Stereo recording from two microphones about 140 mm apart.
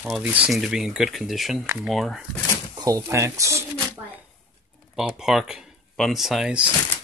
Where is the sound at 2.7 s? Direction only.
25° right (ahead or behind).